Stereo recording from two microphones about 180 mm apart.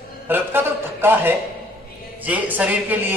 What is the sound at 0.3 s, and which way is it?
A man's voice, 10° right (ahead or behind).